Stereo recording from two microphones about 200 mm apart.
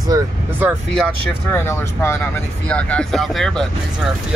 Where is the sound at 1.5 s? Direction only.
10° left (ahead or behind).